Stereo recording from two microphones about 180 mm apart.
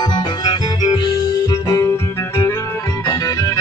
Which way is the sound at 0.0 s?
25° left (ahead or behind).